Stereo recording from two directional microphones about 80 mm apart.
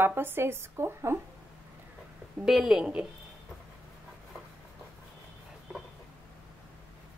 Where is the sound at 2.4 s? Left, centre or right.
Centre.